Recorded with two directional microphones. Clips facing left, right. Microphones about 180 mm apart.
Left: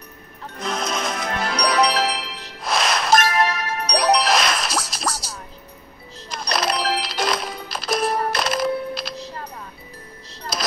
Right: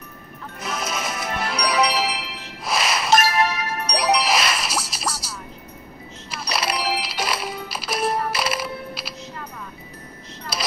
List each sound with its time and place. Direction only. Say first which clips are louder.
0.6 s music: left 3 dB; 5° right (ahead or behind)
2.6 s ding: left 2 dB; 5° right (ahead or behind)
6.3 s music: left 3 dB; 5° right (ahead or behind)
9.1 s music: left 3 dB; 35° left (ahead or behind)